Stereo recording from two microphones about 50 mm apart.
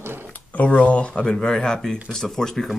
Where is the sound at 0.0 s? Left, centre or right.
Right.